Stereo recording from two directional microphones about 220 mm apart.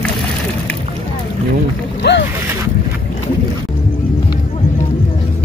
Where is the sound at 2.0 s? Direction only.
50° left (ahead or behind).